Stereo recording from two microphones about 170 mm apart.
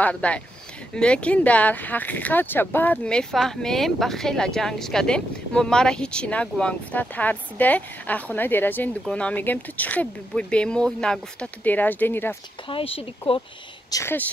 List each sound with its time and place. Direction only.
0.0 s speech: 5° left (ahead or behind)
12.6 s speech: 35° left (ahead or behind)
13.8 s speech: 15° left (ahead or behind)